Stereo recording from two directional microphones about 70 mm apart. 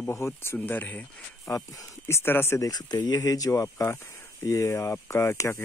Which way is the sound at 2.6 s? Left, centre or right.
Left.